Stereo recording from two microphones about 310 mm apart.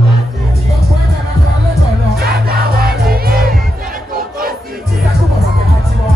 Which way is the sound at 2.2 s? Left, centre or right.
Right.